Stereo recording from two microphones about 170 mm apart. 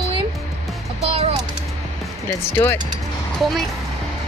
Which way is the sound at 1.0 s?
35° right (ahead or behind).